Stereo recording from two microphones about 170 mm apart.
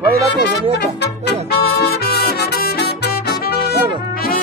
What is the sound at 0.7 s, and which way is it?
Music, 70° left (ahead or behind).